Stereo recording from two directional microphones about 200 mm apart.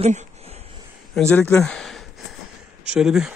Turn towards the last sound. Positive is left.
turn(degrees=-5)  # may be behind; listen again after turning